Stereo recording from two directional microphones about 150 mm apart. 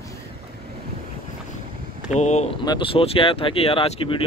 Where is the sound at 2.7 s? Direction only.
35° left (ahead or behind).